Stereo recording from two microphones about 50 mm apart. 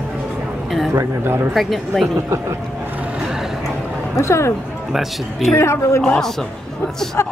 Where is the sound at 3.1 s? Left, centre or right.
Centre.